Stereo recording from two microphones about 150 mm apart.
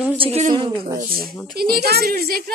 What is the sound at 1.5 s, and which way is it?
A woman's voice, 90° right.